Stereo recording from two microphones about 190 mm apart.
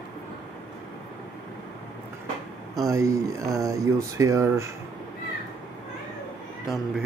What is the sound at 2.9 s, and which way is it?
Speech, 15° right (ahead or behind).